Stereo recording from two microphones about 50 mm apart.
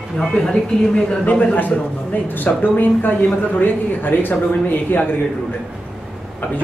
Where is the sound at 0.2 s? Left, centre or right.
Centre.